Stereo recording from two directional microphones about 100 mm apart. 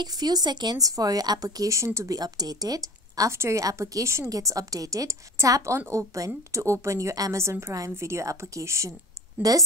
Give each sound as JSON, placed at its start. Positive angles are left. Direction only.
{"t": 0.0, "sound": "a woman's voice", "side_deg": -40}